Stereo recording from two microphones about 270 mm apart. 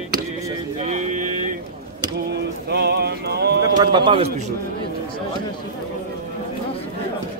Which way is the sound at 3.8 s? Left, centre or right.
Centre.